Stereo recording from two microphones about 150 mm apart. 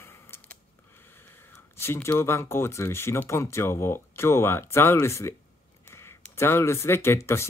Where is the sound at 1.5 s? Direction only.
15° left (ahead or behind).